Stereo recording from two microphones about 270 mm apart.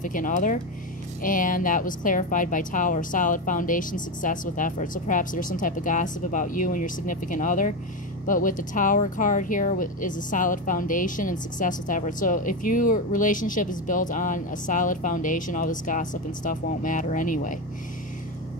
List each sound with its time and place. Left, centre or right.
0.0 s speech: left